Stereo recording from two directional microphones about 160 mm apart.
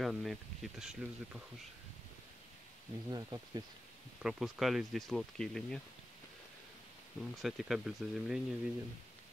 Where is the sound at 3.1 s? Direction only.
25° right (ahead or behind).